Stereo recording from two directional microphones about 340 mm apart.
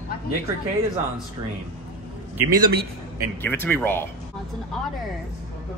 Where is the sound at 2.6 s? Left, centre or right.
Right.